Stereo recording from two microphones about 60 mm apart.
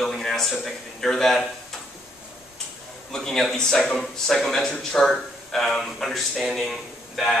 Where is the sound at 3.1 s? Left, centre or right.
Centre.